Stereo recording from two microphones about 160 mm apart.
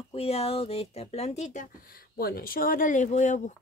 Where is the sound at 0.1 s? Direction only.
40° left (ahead or behind).